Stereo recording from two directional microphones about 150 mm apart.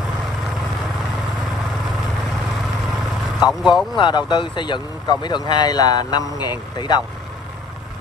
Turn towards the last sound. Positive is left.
turn(degrees=30)  # may be behind; listen again after turning